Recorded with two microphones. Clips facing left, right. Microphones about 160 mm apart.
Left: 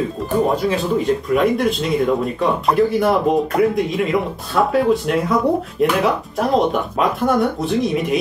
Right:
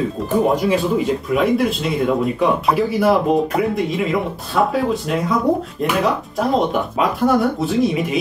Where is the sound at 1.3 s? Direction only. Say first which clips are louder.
Right 1 dB; centre (ahead or behind).